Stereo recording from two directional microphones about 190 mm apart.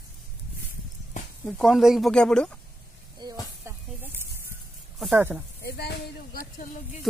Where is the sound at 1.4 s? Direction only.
Centre (ahead or behind).